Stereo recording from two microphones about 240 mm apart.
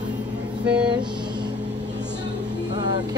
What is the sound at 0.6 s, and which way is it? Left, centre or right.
Vehicle, centre.